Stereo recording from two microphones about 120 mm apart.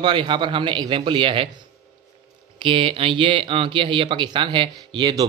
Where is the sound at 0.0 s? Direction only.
40° right (ahead or behind).